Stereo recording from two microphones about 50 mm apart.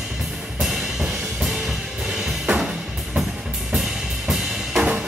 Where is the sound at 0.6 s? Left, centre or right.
Centre.